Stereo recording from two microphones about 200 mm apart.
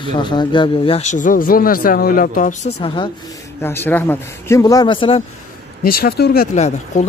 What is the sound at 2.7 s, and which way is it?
Speech, 25° left (ahead or behind).